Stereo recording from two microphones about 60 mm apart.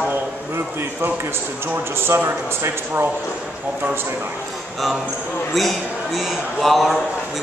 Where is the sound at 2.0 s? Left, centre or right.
Right.